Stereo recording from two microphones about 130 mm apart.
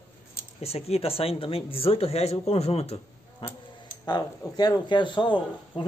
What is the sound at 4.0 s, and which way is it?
Speech, 30° left (ahead or behind).